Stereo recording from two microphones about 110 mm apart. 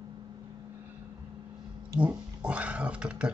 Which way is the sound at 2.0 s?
10° right (ahead or behind).